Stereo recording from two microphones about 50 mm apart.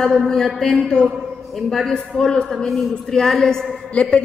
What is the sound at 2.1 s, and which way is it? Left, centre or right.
Speech, centre.